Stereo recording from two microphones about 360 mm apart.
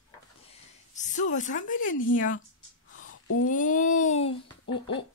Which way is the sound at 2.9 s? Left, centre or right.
Left.